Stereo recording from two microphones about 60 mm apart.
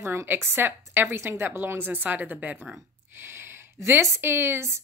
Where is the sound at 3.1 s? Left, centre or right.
Right.